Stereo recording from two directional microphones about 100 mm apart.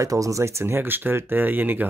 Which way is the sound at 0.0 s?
35° right (ahead or behind).